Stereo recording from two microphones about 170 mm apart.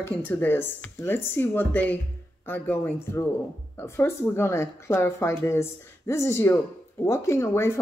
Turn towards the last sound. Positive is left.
turn(degrees=15)  # may be behind; listen again after turning